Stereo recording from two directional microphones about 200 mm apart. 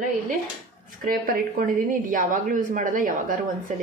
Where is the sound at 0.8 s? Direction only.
45° right (ahead or behind).